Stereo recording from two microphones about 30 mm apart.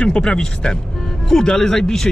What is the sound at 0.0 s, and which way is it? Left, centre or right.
Speech, left.